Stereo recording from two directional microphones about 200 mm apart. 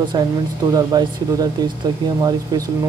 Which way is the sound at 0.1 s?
20° right (ahead or behind).